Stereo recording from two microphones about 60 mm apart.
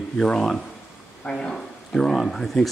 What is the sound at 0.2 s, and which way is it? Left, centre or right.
Speech, centre.